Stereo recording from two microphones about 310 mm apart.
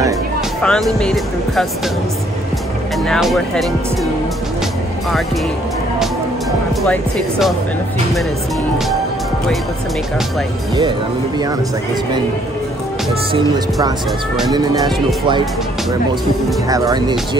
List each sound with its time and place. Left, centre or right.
0.6 s speech: centre
3.1 s speech: centre
6.8 s speech: centre
13.3 s speech: centre
16.6 s speech: centre